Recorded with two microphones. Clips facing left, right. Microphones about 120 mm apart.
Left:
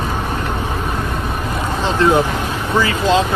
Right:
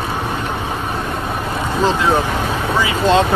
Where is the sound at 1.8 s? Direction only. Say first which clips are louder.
Left 1 dB; centre (ahead or behind).